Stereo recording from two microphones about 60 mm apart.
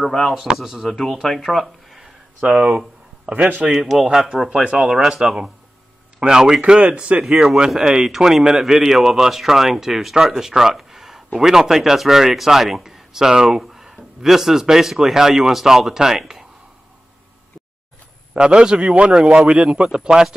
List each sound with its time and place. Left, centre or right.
0.3 s speech: centre
2.4 s speech: centre
3.7 s speech: centre
7.4 s speech: centre
18.3 s speech: centre